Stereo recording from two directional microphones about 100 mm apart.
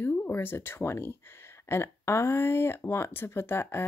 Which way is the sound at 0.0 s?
20° left (ahead or behind).